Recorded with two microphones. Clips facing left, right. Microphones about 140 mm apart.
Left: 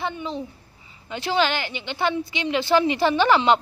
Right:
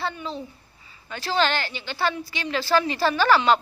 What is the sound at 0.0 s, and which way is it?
A woman's voice, 20° left (ahead or behind).